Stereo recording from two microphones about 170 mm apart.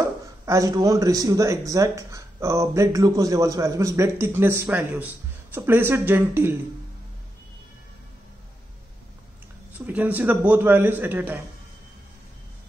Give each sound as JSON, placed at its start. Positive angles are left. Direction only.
{"t": 0.0, "sound": "a man's voice", "side_deg": -20}
{"t": 9.8, "sound": "a man's voice", "side_deg": -10}